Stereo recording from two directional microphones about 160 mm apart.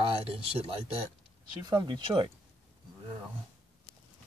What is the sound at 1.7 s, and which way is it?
Speech, 30° right (ahead or behind).